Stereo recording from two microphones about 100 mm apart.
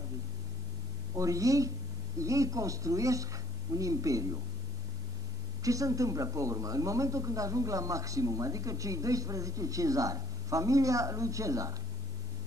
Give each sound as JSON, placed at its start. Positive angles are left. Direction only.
{"t": 1.1, "sound": "speech", "side_deg": -35}
{"t": 5.6, "sound": "speech", "side_deg": -35}